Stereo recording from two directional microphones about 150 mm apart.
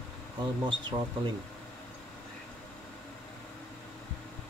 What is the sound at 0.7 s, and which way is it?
Speech, 30° right (ahead or behind).